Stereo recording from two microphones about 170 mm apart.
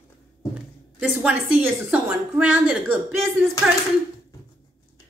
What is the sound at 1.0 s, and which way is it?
A woman's voice, 10° right (ahead or behind).